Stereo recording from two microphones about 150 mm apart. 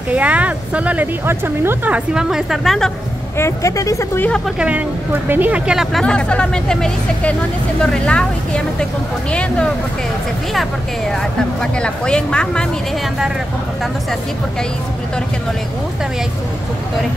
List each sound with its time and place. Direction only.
0.1 s speech: 10° right (ahead or behind)
2.1 s speech: 5° right (ahead or behind)
3.3 s speech: 20° left (ahead or behind)
4.6 s speech: 10° right (ahead or behind)